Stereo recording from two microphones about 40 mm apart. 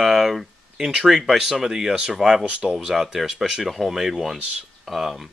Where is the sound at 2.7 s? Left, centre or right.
Centre.